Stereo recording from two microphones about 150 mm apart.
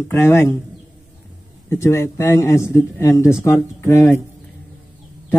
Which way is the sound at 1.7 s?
20° left (ahead or behind).